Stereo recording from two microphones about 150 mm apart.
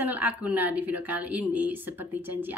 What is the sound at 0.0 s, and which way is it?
A woman's voice, 10° right (ahead or behind).